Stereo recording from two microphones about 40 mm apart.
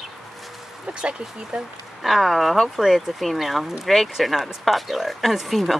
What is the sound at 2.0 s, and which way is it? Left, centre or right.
Speech, centre.